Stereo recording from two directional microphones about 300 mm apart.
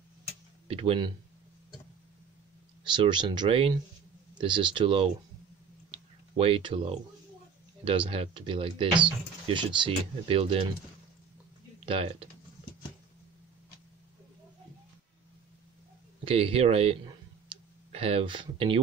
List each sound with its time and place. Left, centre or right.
0.7 s speech: centre
2.8 s speech: centre
5.9 s a sound: centre
7.8 s speech: centre
11.8 s speech: centre
16.3 s speech: centre